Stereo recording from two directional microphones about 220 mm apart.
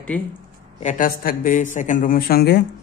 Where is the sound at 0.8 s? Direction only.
40° left (ahead or behind).